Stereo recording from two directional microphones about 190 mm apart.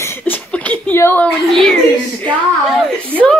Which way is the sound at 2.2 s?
5° left (ahead or behind).